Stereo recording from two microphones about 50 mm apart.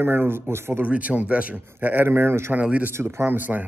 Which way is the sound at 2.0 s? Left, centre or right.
Right.